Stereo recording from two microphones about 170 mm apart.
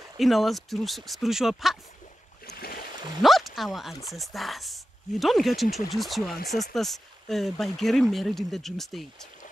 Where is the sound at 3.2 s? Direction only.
Centre (ahead or behind).